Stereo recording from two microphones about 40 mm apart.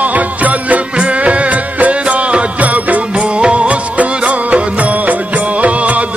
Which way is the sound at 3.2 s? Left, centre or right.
Right.